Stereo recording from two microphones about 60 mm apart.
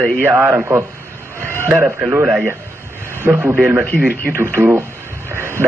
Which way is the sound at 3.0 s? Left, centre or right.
Right.